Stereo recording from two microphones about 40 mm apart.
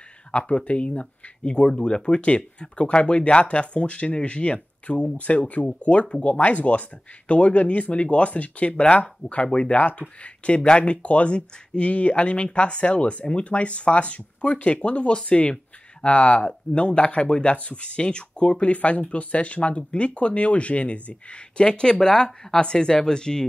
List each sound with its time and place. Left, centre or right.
0.3 s speech: left